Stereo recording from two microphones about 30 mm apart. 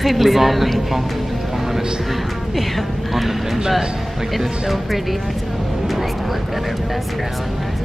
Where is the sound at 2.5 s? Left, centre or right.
Centre.